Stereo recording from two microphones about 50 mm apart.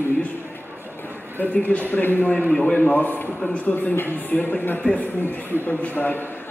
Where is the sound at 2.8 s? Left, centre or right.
Left.